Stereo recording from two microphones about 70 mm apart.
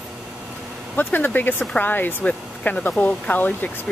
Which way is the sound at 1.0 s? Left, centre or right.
Left.